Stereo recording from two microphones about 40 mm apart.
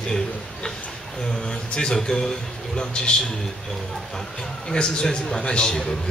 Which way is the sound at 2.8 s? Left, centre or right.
Left.